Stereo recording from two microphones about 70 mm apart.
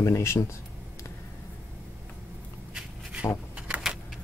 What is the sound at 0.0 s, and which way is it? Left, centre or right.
Speech, left.